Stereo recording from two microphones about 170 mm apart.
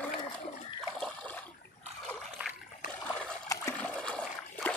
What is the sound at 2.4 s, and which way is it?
Splash, 10° right (ahead or behind).